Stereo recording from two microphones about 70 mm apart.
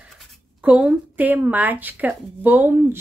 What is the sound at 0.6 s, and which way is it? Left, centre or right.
A woman's voice, centre.